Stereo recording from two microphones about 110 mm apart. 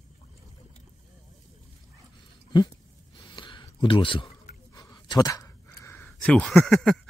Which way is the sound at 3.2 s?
45° left (ahead or behind).